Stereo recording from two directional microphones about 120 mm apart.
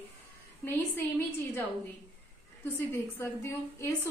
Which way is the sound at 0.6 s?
15° left (ahead or behind).